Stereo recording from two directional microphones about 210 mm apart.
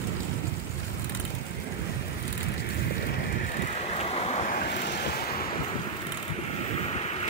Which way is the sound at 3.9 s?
30° left (ahead or behind).